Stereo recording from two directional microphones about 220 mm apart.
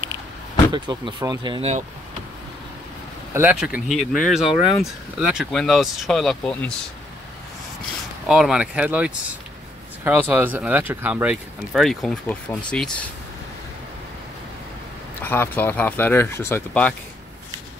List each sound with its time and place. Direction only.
0.7 s speech: 20° right (ahead or behind)
3.3 s speech: 5° right (ahead or behind)
8.3 s speech: 5° right (ahead or behind)
15.2 s speech: 10° left (ahead or behind)